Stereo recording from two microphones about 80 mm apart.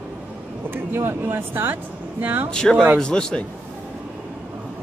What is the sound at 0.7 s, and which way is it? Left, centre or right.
Speech, right.